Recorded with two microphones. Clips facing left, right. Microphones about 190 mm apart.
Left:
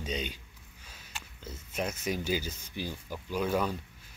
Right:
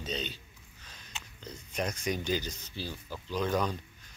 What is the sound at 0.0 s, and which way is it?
Speech, 10° left (ahead or behind).